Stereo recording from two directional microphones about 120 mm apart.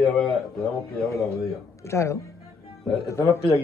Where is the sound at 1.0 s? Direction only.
25° left (ahead or behind).